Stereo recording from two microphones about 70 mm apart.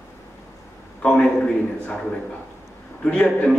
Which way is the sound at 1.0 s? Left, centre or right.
Centre.